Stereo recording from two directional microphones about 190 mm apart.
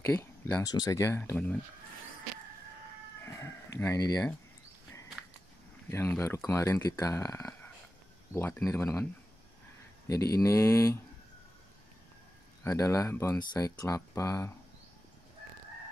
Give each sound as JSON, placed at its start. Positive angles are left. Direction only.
{"t": 0.0, "sound": "speech", "side_deg": 10}
{"t": 3.3, "sound": "speech", "side_deg": 15}
{"t": 5.9, "sound": "speech", "side_deg": 15}
{"t": 10.0, "sound": "speech", "side_deg": 20}
{"t": 12.6, "sound": "speech", "side_deg": 15}